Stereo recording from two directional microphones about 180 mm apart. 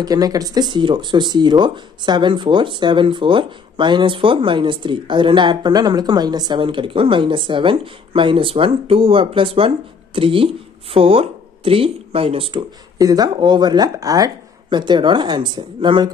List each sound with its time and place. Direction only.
0.0 s speech: 20° right (ahead or behind)